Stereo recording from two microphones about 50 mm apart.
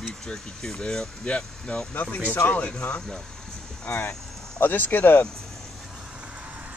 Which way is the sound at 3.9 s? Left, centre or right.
Left.